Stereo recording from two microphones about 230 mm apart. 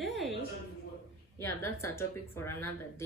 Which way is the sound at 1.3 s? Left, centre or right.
Centre.